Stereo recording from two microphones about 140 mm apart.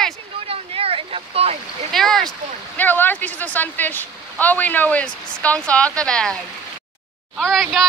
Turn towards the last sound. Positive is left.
turn(degrees=5)  # may be behind; listen again after turning